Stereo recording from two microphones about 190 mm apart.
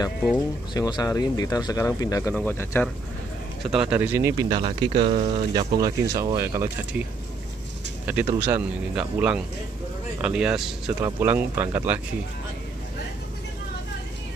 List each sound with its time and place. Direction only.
0.7 s speech: 20° left (ahead or behind)
3.7 s speech: 5° right (ahead or behind)
8.1 s speech: 10° right (ahead or behind)